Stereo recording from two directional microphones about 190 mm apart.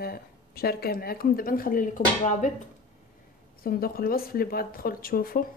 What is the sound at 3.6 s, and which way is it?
A woman's voice, 50° left (ahead or behind).